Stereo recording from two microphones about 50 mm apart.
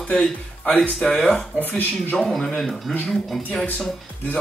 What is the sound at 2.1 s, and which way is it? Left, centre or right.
Speech, centre.